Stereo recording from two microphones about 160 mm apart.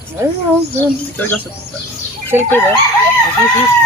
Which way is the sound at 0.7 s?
10° left (ahead or behind).